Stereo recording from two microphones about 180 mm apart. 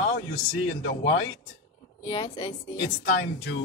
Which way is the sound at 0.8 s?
90° left.